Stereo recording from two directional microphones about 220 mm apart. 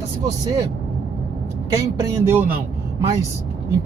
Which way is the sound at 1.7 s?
15° right (ahead or behind).